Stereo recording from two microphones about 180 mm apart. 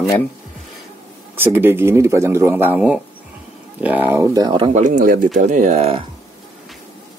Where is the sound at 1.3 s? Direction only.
10° right (ahead or behind).